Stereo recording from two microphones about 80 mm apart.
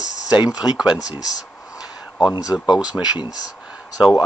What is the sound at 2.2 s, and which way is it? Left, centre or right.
Speech, left.